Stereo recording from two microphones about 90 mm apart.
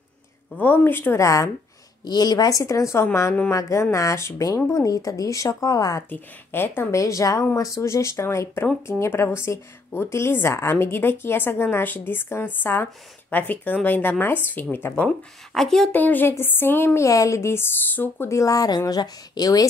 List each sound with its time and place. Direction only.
0.6 s speech: 20° left (ahead or behind)
1.1 s speech: 35° left (ahead or behind)
2.0 s speech: 50° left (ahead or behind)
6.0 s speech: 20° left (ahead or behind)
15.0 s speech: 5° left (ahead or behind)
15.9 s speech: 20° left (ahead or behind)
18.3 s speech: 40° left (ahead or behind)